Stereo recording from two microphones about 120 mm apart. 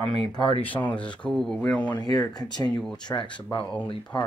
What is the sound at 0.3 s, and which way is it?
Speech, 45° left (ahead or behind).